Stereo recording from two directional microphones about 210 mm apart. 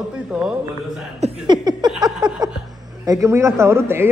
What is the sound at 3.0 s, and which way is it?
A man's voice, 15° right (ahead or behind).